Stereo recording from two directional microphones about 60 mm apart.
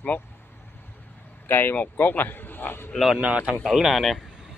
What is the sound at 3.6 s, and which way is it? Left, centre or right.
Speech, centre.